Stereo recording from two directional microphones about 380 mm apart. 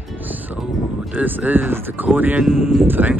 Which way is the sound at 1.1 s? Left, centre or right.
Centre.